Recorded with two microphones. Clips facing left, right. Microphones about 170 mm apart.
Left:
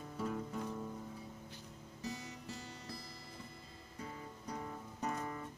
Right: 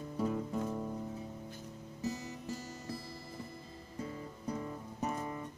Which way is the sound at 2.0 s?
40° right (ahead or behind).